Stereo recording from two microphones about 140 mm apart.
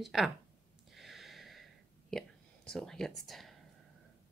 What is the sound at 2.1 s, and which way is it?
Speech, 5° left (ahead or behind).